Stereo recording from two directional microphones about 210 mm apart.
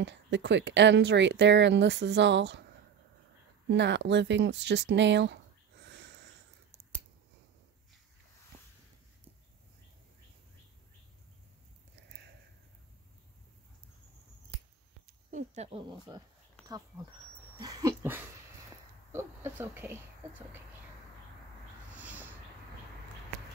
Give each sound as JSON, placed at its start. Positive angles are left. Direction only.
{"t": 0.0, "sound": "speech", "side_deg": -55}
{"t": 3.7, "sound": "speech", "side_deg": -55}
{"t": 5.9, "sound": "wheeze", "side_deg": -55}
{"t": 6.7, "sound": "scissors", "side_deg": -15}
{"t": 15.0, "sound": "snake", "side_deg": -35}
{"t": 17.6, "sound": "a sound", "side_deg": -20}
{"t": 21.9, "sound": "a sound", "side_deg": -5}